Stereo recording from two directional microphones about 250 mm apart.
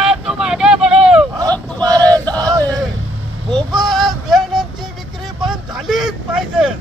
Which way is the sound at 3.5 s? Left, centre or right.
Centre.